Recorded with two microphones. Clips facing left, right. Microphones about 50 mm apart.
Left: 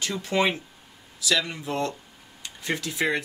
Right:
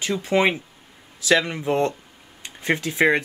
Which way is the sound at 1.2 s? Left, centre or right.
Right.